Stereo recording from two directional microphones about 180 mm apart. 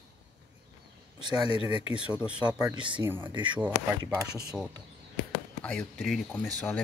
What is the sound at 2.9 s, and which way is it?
Speech, 10° right (ahead or behind).